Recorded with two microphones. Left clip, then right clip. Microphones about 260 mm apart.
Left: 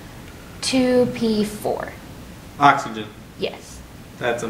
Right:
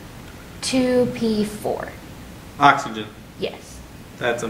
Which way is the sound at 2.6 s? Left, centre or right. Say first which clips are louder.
Even; centre.